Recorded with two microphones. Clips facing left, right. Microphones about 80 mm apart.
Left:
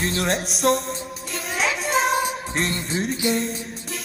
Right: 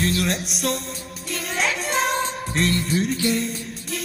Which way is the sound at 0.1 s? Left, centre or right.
Left.